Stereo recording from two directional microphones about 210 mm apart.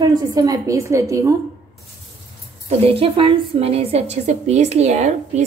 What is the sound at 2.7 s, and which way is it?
A woman's voice, 25° right (ahead or behind).